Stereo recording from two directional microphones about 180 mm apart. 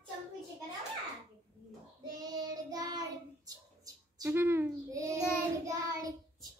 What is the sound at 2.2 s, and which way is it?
Child singing, 20° right (ahead or behind).